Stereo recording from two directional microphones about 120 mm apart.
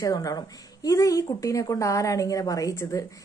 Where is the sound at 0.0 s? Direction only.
30° left (ahead or behind).